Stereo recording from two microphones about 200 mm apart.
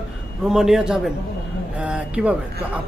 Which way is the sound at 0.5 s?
Centre (ahead or behind).